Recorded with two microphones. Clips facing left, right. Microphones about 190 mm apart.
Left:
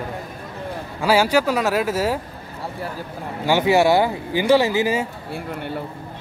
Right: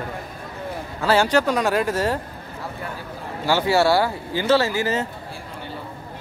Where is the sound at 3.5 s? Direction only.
15° left (ahead or behind).